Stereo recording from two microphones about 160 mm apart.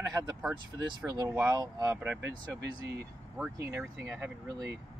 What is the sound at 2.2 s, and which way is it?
Speech, 90° right.